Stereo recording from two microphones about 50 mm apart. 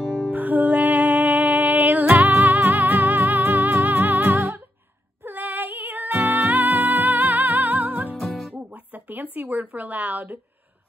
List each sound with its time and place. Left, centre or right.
0.0 s music: centre
0.3 s music: right
8.2 s music: centre
8.7 s a sound: right